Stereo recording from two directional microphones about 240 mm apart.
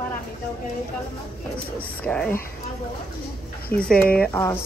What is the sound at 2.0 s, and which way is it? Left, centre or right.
Speech, centre.